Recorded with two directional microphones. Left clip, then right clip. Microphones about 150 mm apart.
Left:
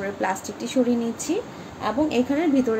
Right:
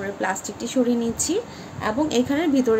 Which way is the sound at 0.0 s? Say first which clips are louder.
Even; 10° right (ahead or behind).